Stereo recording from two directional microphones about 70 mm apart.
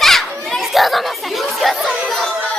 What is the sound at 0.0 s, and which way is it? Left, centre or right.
Children playing, centre.